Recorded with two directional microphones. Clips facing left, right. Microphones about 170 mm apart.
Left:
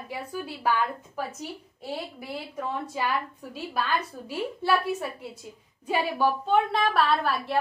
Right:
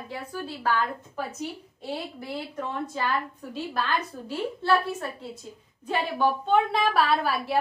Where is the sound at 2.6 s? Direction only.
5° left (ahead or behind).